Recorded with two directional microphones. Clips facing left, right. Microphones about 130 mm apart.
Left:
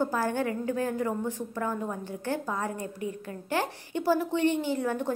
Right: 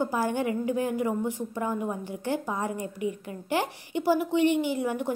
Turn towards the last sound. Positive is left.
turn(degrees=-15)  # may be behind; listen again after turning